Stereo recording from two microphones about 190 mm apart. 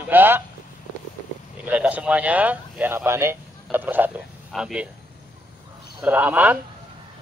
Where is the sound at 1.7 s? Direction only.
5° right (ahead or behind).